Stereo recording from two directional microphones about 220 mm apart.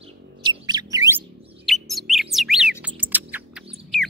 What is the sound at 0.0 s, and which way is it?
Bird, 20° right (ahead or behind).